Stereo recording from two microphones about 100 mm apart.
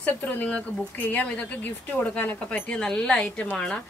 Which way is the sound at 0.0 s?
15° left (ahead or behind).